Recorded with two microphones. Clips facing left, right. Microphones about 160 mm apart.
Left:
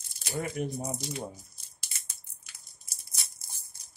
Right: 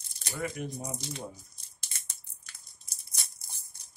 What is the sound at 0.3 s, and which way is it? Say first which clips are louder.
Speech: left 3 dB; 30° left (ahead or behind).